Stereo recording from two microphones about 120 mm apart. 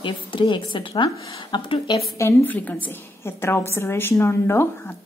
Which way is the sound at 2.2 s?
20° left (ahead or behind).